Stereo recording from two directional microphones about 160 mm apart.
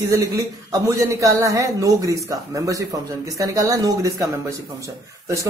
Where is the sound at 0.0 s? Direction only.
20° right (ahead or behind).